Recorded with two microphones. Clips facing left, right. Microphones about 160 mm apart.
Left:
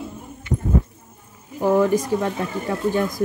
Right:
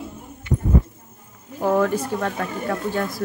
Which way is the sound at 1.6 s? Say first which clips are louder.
Left 2 dB; 15° left (ahead or behind).